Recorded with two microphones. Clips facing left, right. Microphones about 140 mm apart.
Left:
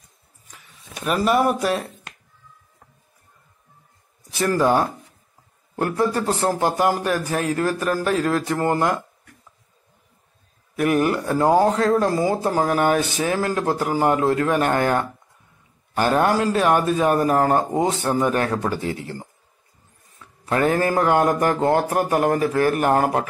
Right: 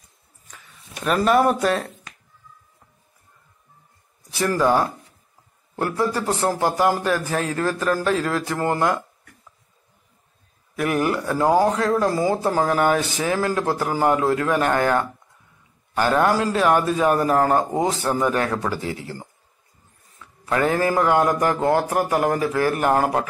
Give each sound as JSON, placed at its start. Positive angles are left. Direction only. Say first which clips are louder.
{"t": 1.0, "sound": "speech", "louder": "right 1 dB", "side_deg": 5}
{"t": 4.6, "sound": "a man's voice", "louder": "even", "side_deg": 15}
{"t": 10.8, "sound": "speech", "louder": "left 2 dB", "side_deg": 20}
{"t": 16.0, "sound": "speech", "louder": "even", "side_deg": 25}
{"t": 18.8, "sound": "speech", "louder": "left 2 dB", "side_deg": -30}
{"t": 20.9, "sound": "speech", "louder": "even", "side_deg": 25}